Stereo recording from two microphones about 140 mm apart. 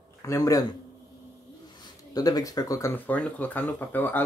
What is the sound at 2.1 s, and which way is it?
Speech, 25° left (ahead or behind).